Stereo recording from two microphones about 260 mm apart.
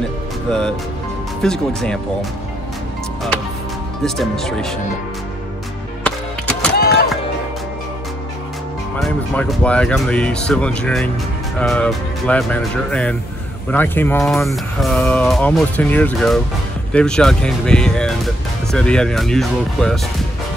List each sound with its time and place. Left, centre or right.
0.5 s speech: centre
4.0 s speech: centre
6.0 s music: centre
6.8 s music: left
8.9 s speech: centre